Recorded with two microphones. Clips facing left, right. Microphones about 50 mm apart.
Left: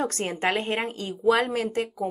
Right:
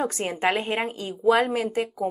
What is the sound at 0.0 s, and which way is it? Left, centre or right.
Speech, centre.